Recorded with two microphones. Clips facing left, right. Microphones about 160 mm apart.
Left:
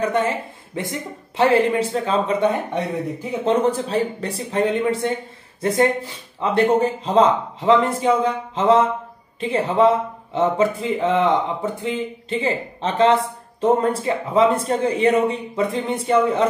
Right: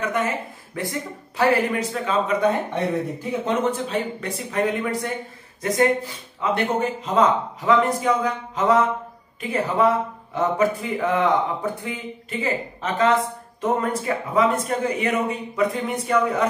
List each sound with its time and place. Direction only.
0.0 s speech: 30° left (ahead or behind)
3.4 s speech: 35° left (ahead or behind)